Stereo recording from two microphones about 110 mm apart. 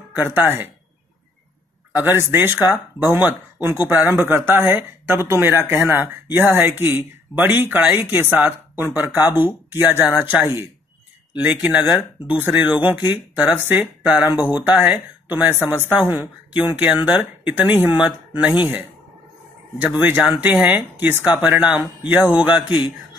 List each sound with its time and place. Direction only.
0.1 s speech: 20° right (ahead or behind)
1.9 s speech: 15° right (ahead or behind)
19.8 s speech: 15° right (ahead or behind)